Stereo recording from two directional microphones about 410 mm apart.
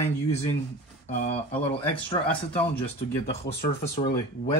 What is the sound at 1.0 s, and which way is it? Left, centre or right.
Speech, centre.